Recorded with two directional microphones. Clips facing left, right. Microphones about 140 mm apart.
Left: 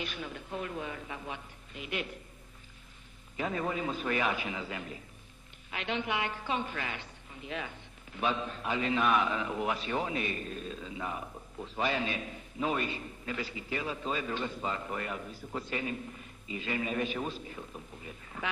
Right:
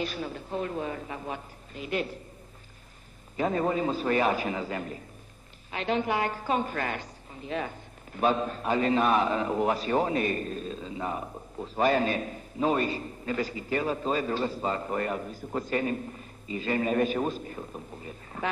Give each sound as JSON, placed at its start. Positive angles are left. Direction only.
{"t": 0.0, "sound": "a woman's voice", "side_deg": -35}
{"t": 3.3, "sound": "a woman's voice", "side_deg": -40}